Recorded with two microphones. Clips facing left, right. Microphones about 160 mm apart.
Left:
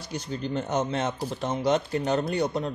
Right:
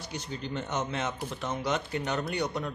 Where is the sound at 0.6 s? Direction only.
35° left (ahead or behind).